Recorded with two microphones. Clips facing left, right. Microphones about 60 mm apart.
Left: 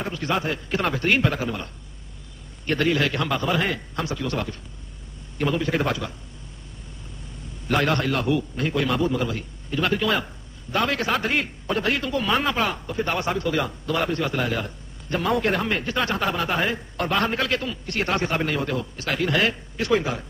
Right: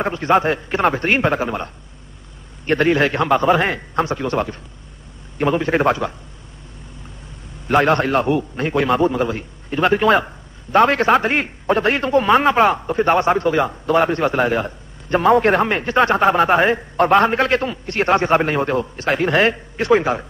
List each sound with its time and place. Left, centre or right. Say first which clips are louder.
0.0 s a man's voice: right 9 dB; right
7.6 s a man's voice: right 7 dB; right